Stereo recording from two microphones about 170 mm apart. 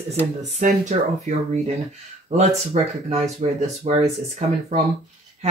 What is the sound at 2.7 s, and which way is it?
Speech, 35° right (ahead or behind).